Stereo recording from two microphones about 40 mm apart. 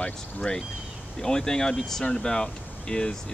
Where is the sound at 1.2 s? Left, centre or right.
Centre.